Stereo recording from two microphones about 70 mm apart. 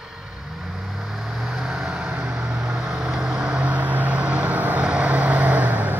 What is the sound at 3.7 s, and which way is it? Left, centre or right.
Vehicle, right.